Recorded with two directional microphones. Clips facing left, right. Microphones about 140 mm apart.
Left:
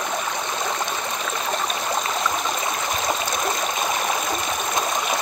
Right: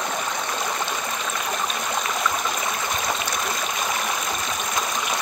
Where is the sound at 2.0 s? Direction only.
25° left (ahead or behind).